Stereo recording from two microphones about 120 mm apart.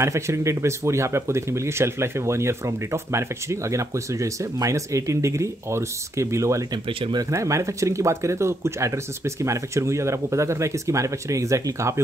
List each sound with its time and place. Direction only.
0.0 s speech: 25° right (ahead or behind)
6.9 s speech: 50° right (ahead or behind)
7.2 s speech: 25° right (ahead or behind)